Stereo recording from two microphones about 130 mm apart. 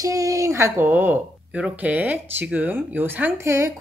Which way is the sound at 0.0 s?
25° right (ahead or behind).